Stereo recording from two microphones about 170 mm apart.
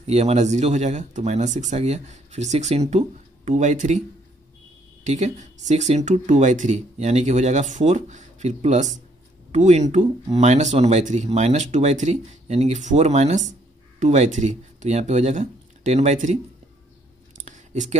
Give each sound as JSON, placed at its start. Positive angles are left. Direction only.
{"t": 0.0, "sound": "speech", "side_deg": -40}
{"t": 5.0, "sound": "speech", "side_deg": -45}
{"t": 17.5, "sound": "a sound", "side_deg": -45}